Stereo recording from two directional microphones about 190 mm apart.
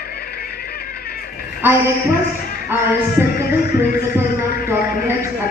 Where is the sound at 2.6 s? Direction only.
10° right (ahead or behind).